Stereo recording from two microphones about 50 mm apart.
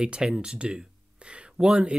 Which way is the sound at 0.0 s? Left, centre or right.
Centre.